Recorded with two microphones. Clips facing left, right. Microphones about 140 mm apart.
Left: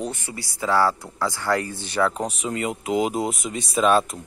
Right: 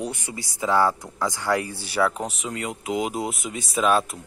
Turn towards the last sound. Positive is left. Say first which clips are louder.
# left 2 dB
turn(degrees=0)  # may be behind; listen again after turning